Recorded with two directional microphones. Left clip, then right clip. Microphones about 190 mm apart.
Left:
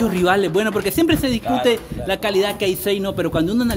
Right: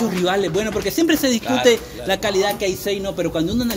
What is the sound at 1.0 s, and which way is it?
Speech, 10° left (ahead or behind).